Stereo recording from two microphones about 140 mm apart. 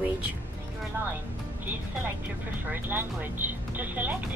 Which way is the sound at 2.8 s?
15° right (ahead or behind).